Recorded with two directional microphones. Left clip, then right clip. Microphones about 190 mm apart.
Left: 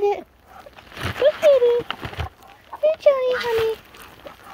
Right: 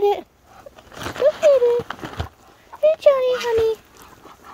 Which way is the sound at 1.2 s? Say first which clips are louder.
Even; 15° right (ahead or behind).